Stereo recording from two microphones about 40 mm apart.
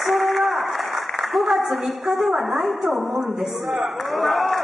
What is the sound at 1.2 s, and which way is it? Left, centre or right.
A woman's voice, centre.